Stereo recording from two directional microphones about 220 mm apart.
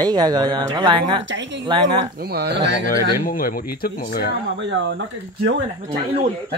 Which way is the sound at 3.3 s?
40° left (ahead or behind).